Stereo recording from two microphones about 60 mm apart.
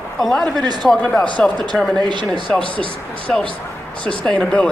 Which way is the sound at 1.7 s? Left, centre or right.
Centre.